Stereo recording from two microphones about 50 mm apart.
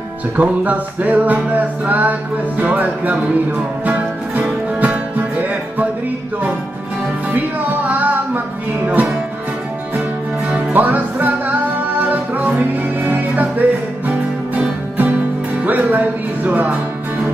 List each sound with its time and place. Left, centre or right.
0.4 s music: right
4.7 s music: right
7.3 s music: right
10.7 s music: right
15.6 s music: right